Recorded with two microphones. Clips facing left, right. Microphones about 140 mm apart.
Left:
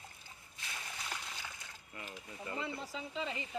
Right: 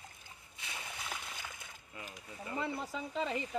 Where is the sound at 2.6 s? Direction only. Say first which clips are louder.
Right 3 dB; 50° right (ahead or behind).